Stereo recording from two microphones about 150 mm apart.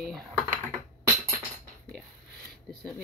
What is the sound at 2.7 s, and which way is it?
Speech, centre (ahead or behind).